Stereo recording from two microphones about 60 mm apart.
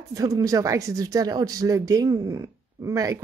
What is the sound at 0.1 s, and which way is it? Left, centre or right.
Speech, right.